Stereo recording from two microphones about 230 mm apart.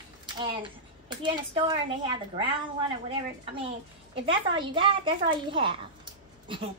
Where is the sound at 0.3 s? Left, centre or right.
Right.